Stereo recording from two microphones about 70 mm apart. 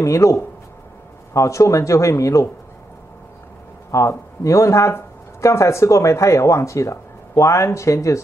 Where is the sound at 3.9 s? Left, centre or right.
Left.